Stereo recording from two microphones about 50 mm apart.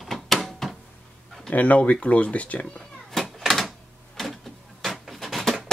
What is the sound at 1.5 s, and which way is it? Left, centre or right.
Speech, left.